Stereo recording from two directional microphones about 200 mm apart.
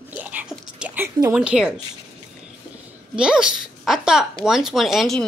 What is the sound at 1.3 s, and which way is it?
Speech, 5° right (ahead or behind).